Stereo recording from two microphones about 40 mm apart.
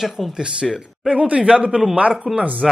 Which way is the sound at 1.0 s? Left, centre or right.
Right.